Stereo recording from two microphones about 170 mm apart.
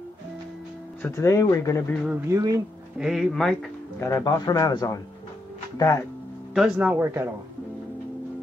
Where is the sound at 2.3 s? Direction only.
20° right (ahead or behind).